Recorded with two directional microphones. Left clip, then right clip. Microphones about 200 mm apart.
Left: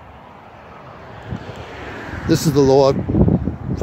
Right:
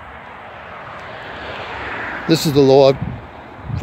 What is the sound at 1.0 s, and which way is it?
Vehicle, 50° left (ahead or behind).